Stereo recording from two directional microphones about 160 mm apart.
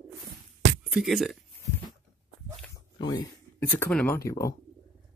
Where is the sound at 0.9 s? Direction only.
Centre (ahead or behind).